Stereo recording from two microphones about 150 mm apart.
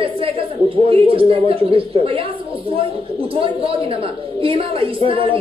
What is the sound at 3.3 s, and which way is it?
A woman's voice, 40° right (ahead or behind).